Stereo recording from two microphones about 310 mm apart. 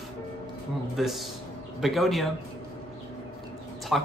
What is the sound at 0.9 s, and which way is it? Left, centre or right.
Speech, centre.